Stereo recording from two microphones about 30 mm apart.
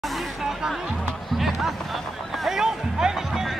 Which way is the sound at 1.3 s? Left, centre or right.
Centre.